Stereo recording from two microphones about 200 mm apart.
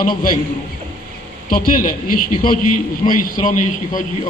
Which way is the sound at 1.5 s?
45° left (ahead or behind).